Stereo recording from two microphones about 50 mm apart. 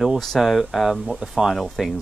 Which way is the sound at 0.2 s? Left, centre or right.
Centre.